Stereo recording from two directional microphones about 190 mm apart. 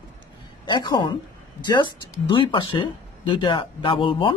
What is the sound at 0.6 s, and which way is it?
A woman's voice, 25° left (ahead or behind).